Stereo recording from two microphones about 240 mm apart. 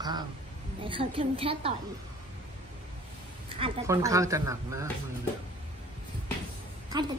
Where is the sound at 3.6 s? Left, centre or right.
Centre.